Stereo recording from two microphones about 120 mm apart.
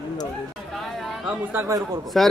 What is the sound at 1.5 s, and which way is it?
Speech, 25° right (ahead or behind).